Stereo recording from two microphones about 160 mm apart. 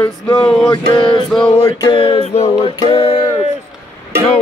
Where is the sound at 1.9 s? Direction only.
35° left (ahead or behind).